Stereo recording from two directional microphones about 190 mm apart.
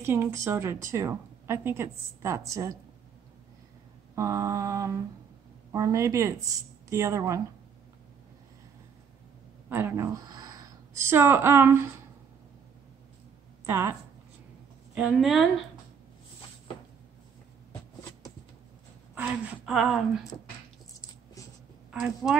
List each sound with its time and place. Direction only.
0.0 s a woman's voice: 10° right (ahead or behind)
4.1 s a woman's voice: 15° right (ahead or behind)
9.7 s speech: 10° right (ahead or behind)
13.7 s a woman's voice: 10° right (ahead or behind)
15.0 s a woman's voice: centre (ahead or behind)
19.1 s a woman's voice: 5° right (ahead or behind)
21.9 s a woman's voice: centre (ahead or behind)